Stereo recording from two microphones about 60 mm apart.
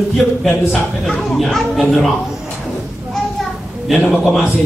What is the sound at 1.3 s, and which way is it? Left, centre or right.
Speech, centre.